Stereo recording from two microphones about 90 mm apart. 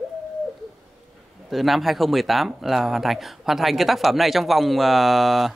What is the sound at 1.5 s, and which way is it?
Speech, centre (ahead or behind).